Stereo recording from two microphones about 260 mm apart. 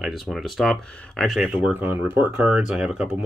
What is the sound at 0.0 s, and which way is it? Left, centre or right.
Speech, centre.